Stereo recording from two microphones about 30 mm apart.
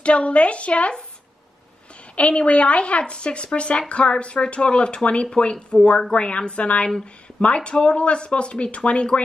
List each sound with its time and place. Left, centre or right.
0.0 s a woman's voice: left
2.1 s speech: left